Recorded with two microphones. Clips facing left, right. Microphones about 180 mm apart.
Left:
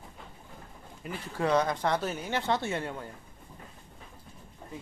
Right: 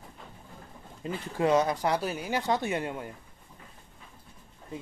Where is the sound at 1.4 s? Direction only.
15° right (ahead or behind).